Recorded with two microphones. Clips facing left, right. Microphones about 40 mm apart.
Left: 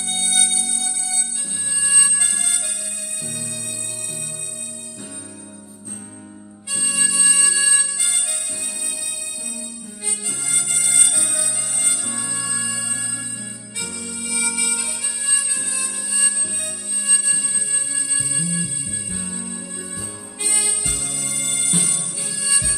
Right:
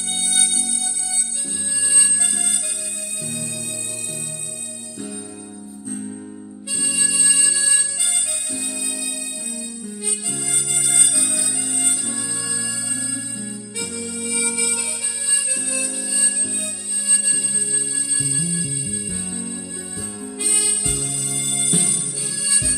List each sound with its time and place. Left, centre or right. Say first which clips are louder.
0.2 s music: left 2 dB; left
1.8 s music: left 2 dB; left
7.1 s music: left 3 dB; left
10.8 s music: even; left
11.1 s music: right 1 dB; centre
12.1 s music: even; left
14.2 s harmonica: left 1 dB; left
18.1 s music: even; left
19.2 s music: right 1 dB; centre
20.4 s harmonica: left 2 dB; left
21.7 s music: right 1 dB; centre